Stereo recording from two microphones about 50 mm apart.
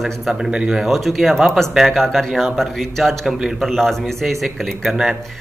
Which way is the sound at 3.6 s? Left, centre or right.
Centre.